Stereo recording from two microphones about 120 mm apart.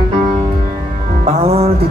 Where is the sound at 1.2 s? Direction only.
60° right (ahead or behind).